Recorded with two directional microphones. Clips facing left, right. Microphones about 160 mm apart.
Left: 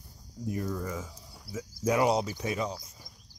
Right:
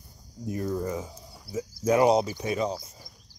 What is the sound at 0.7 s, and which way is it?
Speech, 25° right (ahead or behind).